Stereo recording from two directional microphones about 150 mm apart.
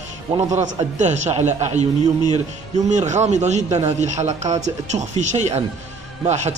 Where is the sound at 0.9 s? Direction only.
50° right (ahead or behind).